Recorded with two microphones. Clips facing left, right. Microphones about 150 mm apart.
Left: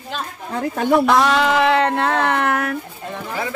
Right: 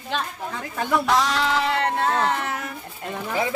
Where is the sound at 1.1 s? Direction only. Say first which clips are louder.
Left 6 dB; 60° left (ahead or behind).